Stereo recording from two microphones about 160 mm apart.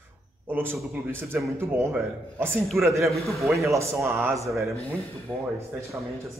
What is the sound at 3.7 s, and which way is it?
Speech, 20° right (ahead or behind).